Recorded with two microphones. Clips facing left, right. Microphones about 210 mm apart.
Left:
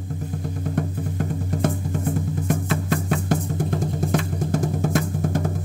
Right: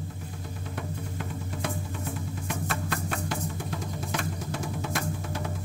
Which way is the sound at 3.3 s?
45° left (ahead or behind).